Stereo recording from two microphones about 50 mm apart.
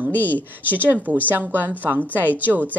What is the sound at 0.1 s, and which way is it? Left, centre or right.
Speech, left.